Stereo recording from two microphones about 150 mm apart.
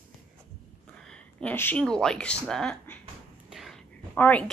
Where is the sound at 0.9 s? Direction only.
5° left (ahead or behind).